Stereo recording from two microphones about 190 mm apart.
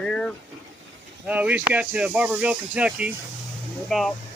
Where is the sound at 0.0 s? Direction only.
5° left (ahead or behind).